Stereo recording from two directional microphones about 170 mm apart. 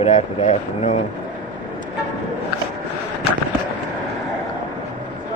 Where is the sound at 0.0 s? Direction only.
45° left (ahead or behind).